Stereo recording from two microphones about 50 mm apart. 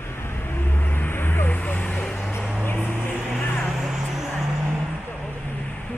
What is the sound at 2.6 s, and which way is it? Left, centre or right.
Vehicle, left.